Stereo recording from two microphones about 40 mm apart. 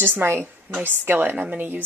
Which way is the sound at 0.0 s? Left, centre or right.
Right.